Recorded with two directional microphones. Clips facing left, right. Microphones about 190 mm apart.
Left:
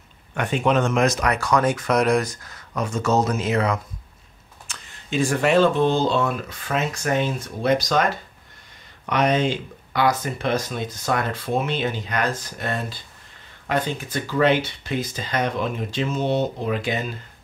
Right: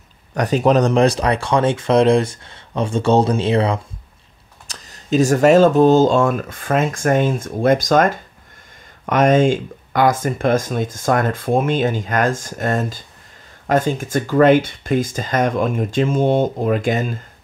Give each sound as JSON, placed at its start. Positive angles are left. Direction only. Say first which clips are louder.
{"t": 0.3, "sound": "speech", "louder": "right 6 dB", "side_deg": -40}